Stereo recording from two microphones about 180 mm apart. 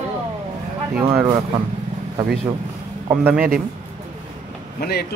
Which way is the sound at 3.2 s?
10° right (ahead or behind).